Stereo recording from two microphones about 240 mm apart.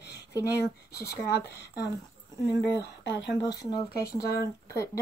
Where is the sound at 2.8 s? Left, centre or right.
Left.